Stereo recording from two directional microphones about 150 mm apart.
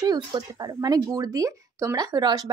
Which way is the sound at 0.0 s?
25° right (ahead or behind).